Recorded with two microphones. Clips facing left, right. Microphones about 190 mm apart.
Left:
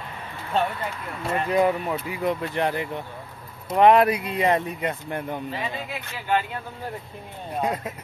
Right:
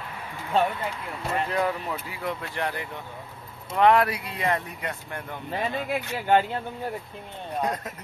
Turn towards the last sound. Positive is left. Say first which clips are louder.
# left 2 dB
turn(degrees=10)  # may be behind; listen again after turning